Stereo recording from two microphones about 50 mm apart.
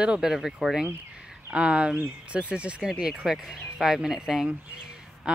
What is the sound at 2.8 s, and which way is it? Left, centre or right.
Speech, centre.